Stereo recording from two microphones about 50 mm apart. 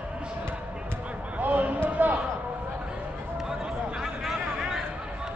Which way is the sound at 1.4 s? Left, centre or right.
Right.